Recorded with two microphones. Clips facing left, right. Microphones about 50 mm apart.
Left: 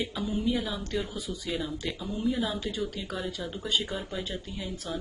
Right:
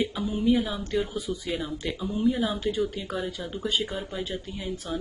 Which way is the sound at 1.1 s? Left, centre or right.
Right.